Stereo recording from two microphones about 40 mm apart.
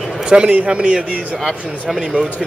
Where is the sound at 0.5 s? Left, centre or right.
Right.